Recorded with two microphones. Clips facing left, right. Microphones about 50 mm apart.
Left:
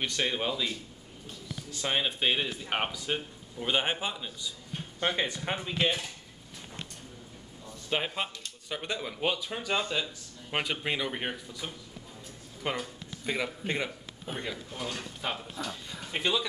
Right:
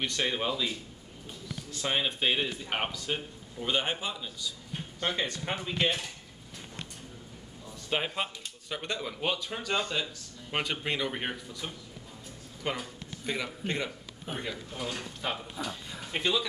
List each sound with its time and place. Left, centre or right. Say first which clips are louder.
0.0 s a man's voice: even; centre
7.9 s a man's voice: even; centre
14.4 s speech: even; centre